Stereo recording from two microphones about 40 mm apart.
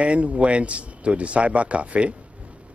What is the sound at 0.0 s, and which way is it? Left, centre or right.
Speech, right.